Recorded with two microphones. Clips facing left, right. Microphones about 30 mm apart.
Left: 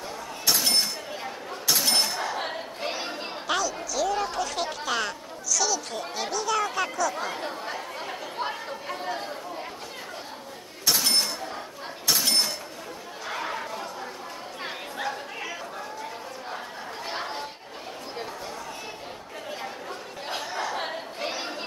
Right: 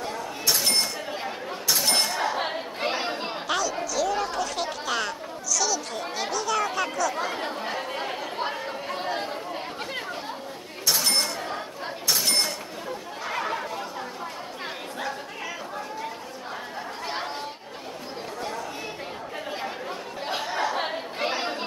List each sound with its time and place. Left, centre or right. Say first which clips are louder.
1.1 s chatter: right 3 dB; centre
1.8 s a sound: right 1 dB; centre
2.1 s chatter: right 3 dB; centre
3.4 s chatter: even; centre
9.1 s chatter: right 3 dB; right
11.0 s cash register: even; centre
13.3 s chatter: right 3 dB; centre
17.1 s chatter: even; centre
19.6 s chatter: right 3 dB; centre